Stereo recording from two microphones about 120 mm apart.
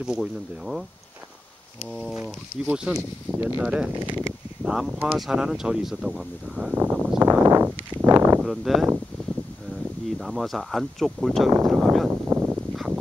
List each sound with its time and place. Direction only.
0.0 s speech: 5° right (ahead or behind)
2.6 s speech: 5° right (ahead or behind)
3.0 s speech: 25° right (ahead or behind)
3.6 s speech: 10° right (ahead or behind)
6.8 s a sound: 25° right (ahead or behind)
8.4 s speech: centre (ahead or behind)
10.1 s speech: centre (ahead or behind)
12.3 s a sound: 15° right (ahead or behind)
12.7 s duck: 5° right (ahead or behind)